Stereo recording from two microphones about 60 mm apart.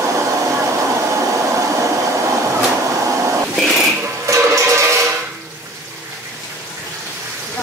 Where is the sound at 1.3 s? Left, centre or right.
Right.